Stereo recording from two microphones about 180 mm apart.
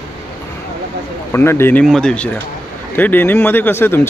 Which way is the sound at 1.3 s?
15° left (ahead or behind).